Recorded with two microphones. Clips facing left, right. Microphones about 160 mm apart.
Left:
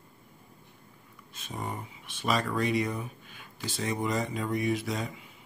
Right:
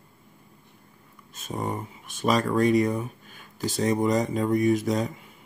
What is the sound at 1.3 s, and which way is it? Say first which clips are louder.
Speech: right 7 dB; 45° right (ahead or behind).